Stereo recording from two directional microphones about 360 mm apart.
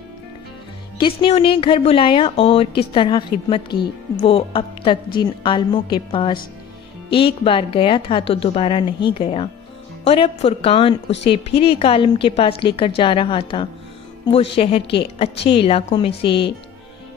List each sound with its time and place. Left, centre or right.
0.9 s speech: centre